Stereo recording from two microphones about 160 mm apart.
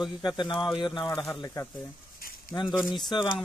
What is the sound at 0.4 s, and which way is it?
Speech, 30° left (ahead or behind).